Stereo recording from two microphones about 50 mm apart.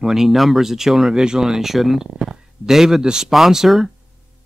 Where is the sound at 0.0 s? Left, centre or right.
Centre.